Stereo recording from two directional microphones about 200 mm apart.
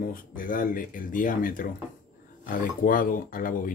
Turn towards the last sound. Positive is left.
turn(degrees=45)  # may be behind; listen again after turning